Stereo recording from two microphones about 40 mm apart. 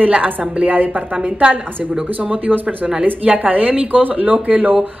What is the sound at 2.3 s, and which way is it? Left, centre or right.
Speech, right.